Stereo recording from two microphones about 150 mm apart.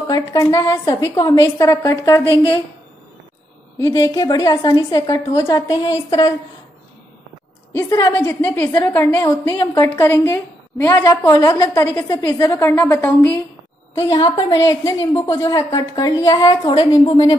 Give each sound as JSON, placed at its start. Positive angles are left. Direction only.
{"t": 0.1, "sound": "a woman's voice", "side_deg": 25}
{"t": 3.8, "sound": "a woman's voice", "side_deg": 25}
{"t": 7.7, "sound": "a woman's voice", "side_deg": 20}
{"t": 14.0, "sound": "a woman's voice", "side_deg": 25}